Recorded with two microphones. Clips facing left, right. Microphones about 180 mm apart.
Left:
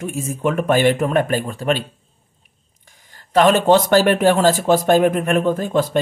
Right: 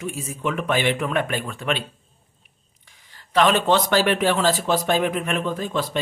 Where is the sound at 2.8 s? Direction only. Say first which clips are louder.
Left 3 dB; 45° left (ahead or behind).